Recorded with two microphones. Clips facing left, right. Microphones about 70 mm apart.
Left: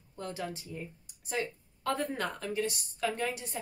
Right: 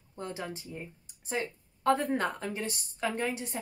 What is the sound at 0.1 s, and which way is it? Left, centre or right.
A woman's voice, right.